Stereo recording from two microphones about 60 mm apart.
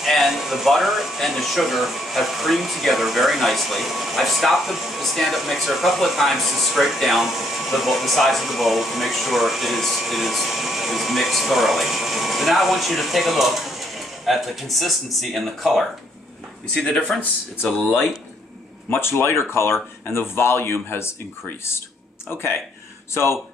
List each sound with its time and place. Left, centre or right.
0.0 s speech: centre
16.7 s speech: centre
17.2 s speech: left